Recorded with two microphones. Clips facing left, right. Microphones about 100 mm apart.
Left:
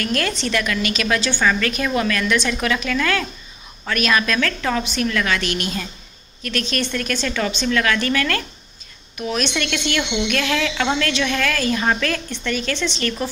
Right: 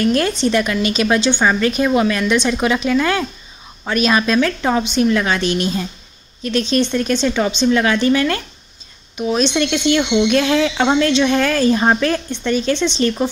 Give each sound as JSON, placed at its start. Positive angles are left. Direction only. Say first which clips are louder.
{"t": 0.0, "sound": "a woman's voice", "louder": "right 7 dB", "side_deg": -25}